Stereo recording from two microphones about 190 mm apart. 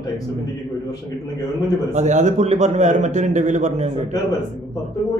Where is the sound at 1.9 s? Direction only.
40° right (ahead or behind).